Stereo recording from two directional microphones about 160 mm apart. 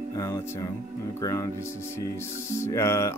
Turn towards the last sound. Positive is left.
turn(degrees=15)  # may be behind; listen again after turning